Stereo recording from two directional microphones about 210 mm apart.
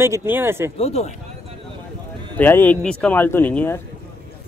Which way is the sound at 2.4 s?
10° left (ahead or behind).